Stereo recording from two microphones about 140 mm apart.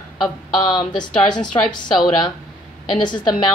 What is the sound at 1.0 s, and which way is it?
Speech, 30° left (ahead or behind).